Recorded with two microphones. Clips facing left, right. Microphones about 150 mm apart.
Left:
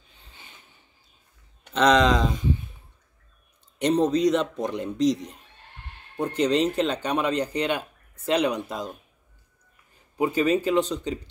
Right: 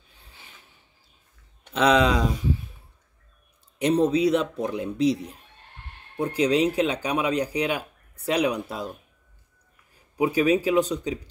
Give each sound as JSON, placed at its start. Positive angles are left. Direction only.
{"t": 0.1, "sound": "a sound", "side_deg": -10}
{"t": 1.7, "sound": "speech", "side_deg": -5}
{"t": 4.0, "sound": "speech", "side_deg": -5}
{"t": 10.1, "sound": "speech", "side_deg": -10}